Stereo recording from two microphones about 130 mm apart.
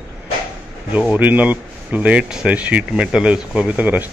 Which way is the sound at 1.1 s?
10° right (ahead or behind).